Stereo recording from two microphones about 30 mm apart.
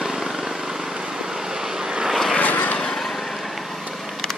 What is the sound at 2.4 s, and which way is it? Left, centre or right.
Vehicle, left.